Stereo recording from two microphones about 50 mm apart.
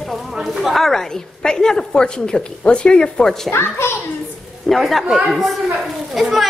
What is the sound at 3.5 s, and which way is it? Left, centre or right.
Speech, left.